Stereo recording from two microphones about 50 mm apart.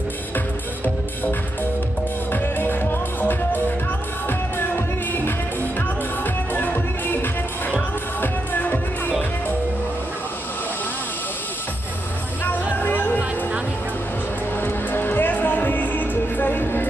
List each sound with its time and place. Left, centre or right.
2.3 s music: left
12.8 s music: left
14.6 s music: left